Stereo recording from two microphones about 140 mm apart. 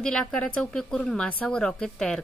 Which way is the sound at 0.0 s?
5° left (ahead or behind).